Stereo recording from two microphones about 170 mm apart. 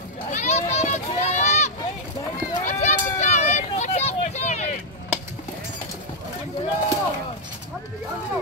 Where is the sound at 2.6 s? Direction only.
45° left (ahead or behind).